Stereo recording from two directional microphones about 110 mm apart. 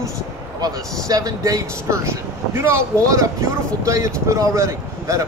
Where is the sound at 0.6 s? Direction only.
35° right (ahead or behind).